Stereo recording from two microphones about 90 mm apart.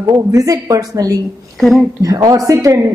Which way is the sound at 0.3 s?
40° right (ahead or behind).